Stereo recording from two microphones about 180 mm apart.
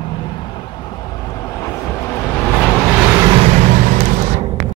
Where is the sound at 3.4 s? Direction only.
40° right (ahead or behind).